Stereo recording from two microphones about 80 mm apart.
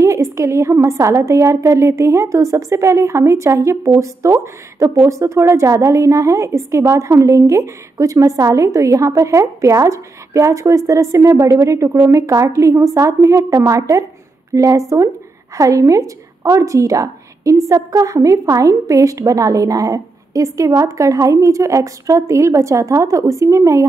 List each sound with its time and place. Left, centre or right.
0.0 s a woman's voice: right